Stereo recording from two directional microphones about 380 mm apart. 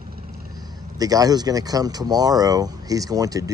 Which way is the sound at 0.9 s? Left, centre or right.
Centre.